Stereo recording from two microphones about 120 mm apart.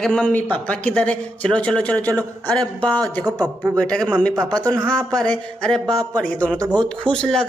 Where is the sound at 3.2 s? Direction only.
35° right (ahead or behind).